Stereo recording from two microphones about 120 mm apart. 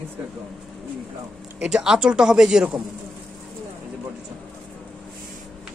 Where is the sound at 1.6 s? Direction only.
5° right (ahead or behind).